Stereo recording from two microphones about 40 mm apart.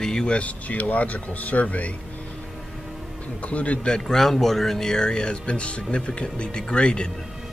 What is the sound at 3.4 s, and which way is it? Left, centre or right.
Speech, left.